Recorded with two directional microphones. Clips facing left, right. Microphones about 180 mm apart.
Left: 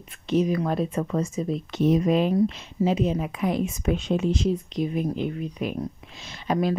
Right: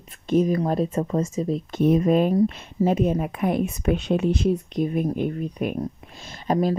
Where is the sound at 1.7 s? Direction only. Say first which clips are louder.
Right 2 dB; 50° right (ahead or behind).